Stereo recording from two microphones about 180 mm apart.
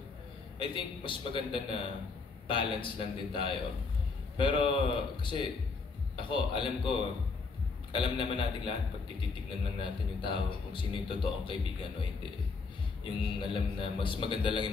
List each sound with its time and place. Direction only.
0.6 s speech: 30° left (ahead or behind)
9.8 s speech: 30° left (ahead or behind)
13.0 s speech: 30° left (ahead or behind)